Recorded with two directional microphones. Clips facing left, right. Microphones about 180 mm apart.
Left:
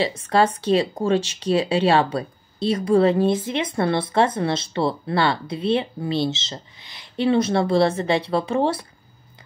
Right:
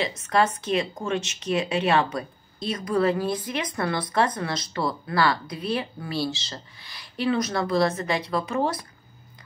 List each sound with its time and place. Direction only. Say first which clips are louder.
0.0 s speech: left 4 dB; 30° left (ahead or behind)